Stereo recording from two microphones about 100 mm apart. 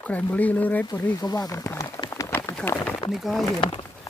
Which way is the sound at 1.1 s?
40° left (ahead or behind).